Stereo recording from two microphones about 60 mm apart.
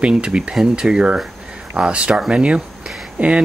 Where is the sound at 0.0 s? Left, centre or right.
Centre.